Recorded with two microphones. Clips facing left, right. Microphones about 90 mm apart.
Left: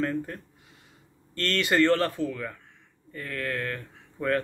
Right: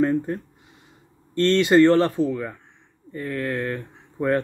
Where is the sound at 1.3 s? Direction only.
25° right (ahead or behind).